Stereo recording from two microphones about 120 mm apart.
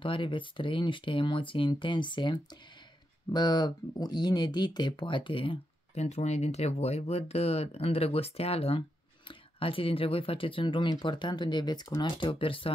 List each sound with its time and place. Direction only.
0.0 s speech: 45° left (ahead or behind)
5.9 s speech: 65° left (ahead or behind); by 12.7 s 50° left (ahead or behind)